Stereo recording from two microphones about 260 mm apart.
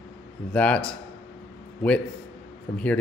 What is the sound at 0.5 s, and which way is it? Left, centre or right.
Speech, centre.